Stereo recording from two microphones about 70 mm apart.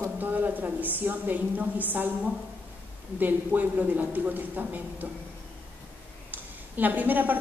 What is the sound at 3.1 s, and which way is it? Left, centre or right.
A woman's voice, right.